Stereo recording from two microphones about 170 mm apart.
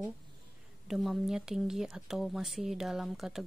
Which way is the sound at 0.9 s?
Centre (ahead or behind).